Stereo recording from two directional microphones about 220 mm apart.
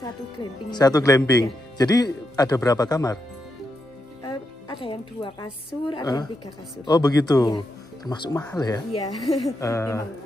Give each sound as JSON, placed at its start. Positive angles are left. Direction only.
{"t": 0.0, "sound": "speech", "side_deg": 20}
{"t": 4.3, "sound": "speech", "side_deg": 25}